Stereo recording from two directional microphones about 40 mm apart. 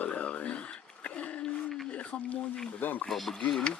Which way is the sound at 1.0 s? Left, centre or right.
Left.